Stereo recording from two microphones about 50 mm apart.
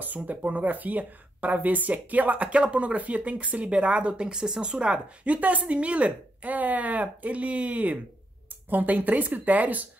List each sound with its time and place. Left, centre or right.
0.0 s speech: right
4.1 s a woman's voice: centre; by 9.8 s right